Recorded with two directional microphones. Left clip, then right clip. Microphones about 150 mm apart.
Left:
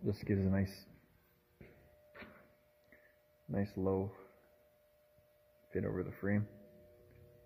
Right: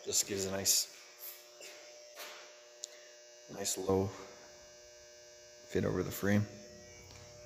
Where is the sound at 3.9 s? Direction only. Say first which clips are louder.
Right 5 dB; 20° right (ahead or behind).